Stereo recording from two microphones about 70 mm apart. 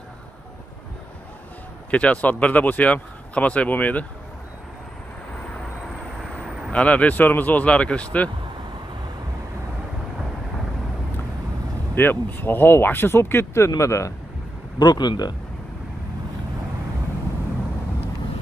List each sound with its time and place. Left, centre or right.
1.9 s speech: centre
6.2 s vehicle: centre
6.7 s speech: centre
11.9 s speech: left
13.7 s speech: left
14.8 s speech: left